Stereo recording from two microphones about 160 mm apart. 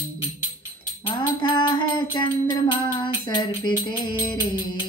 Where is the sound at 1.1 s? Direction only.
30° left (ahead or behind).